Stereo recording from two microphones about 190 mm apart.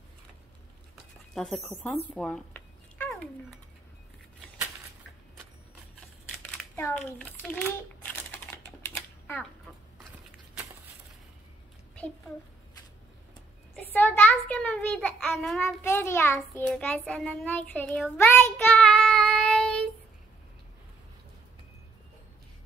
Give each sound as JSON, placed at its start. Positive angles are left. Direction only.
{"t": 1.3, "sound": "speech", "side_deg": 5}
{"t": 2.0, "sound": "a sound", "side_deg": 5}
{"t": 6.8, "sound": "a child's voice", "side_deg": 5}
{"t": 8.9, "sound": "typewriter", "side_deg": 10}
{"t": 13.7, "sound": "a child's voice", "side_deg": 10}
{"t": 16.6, "sound": "child singing", "side_deg": 5}